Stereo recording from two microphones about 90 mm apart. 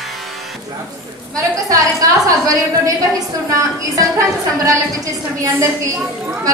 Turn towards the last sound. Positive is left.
turn(degrees=-40)  # may be behind; listen again after turning